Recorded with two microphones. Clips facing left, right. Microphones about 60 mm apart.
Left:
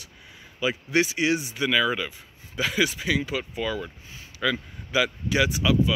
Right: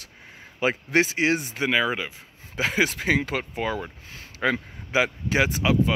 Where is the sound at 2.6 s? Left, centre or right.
Right.